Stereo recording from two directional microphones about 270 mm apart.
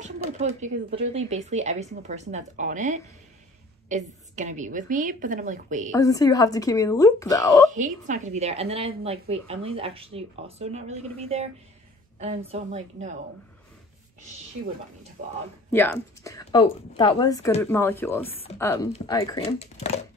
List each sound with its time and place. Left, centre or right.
0.0 s speech: right
5.9 s a woman's voice: centre
7.7 s speech: right
15.7 s a woman's voice: centre